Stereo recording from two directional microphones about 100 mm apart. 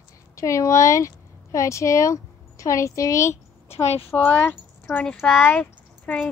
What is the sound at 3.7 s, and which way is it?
Speech, 90° left.